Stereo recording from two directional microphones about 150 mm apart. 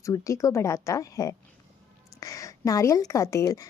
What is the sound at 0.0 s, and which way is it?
Speech, 20° left (ahead or behind).